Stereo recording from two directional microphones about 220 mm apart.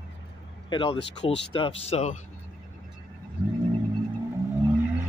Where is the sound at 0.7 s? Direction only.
25° left (ahead or behind).